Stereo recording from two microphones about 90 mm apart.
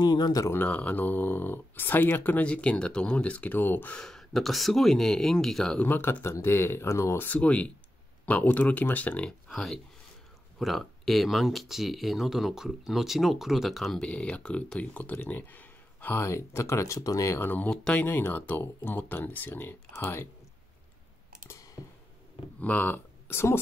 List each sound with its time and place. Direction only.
0.0 s speech: 50° left (ahead or behind)
0.5 s speech: 20° left (ahead or behind)
4.0 s speech: 5° left (ahead or behind)
5.8 s speech: 20° left (ahead or behind)
9.5 s speech: 5° left (ahead or behind)
14.0 s speech: 10° left (ahead or behind); by 17.4 s 40° left (ahead or behind)
17.4 s speech: 20° left (ahead or behind)
22.6 s speech: 15° left (ahead or behind)